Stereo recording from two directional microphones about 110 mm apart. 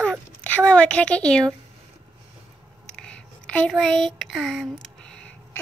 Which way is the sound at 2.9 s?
10° left (ahead or behind).